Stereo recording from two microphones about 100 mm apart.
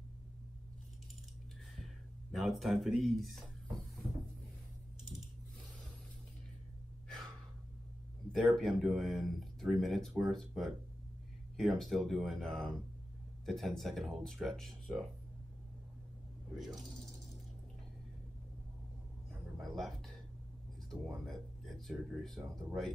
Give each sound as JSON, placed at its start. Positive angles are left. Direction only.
{"t": 2.3, "sound": "speech", "side_deg": 0}
{"t": 8.3, "sound": "speech", "side_deg": 0}
{"t": 16.5, "sound": "speech", "side_deg": 0}
{"t": 19.6, "sound": "music", "side_deg": 0}
{"t": 20.9, "sound": "a sound", "side_deg": 0}